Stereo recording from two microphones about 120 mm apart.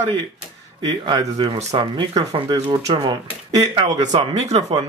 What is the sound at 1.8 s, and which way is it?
Speech, 40° right (ahead or behind).